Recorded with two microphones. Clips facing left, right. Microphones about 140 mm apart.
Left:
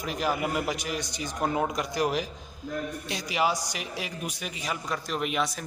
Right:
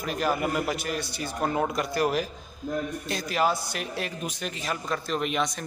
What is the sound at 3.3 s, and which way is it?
A man's voice, 15° left (ahead or behind).